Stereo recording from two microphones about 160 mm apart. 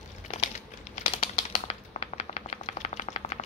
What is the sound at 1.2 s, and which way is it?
Typewriter, 45° left (ahead or behind).